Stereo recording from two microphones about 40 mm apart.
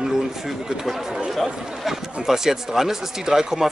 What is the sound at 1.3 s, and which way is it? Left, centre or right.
A man's voice, centre.